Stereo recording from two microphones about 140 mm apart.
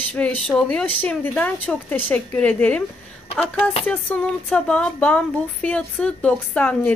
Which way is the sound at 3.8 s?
10° left (ahead or behind).